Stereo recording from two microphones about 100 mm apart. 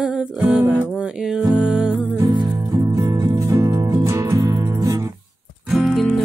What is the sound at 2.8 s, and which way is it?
Music, 35° right (ahead or behind).